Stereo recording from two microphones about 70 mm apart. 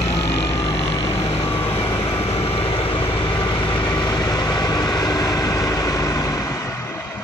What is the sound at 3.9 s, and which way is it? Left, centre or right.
Vehicle, left.